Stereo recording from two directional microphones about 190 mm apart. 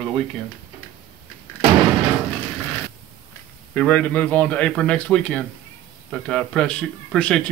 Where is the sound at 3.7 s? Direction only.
5° left (ahead or behind).